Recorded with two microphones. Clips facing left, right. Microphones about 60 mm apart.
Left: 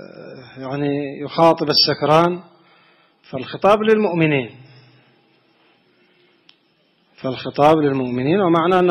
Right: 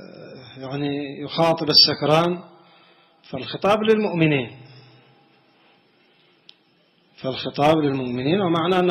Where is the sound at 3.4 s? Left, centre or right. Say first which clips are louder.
Left 5 dB; left.